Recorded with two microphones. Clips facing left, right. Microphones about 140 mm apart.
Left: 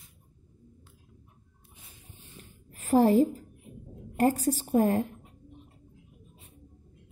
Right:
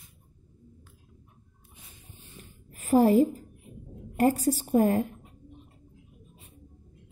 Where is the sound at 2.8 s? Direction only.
35° left (ahead or behind).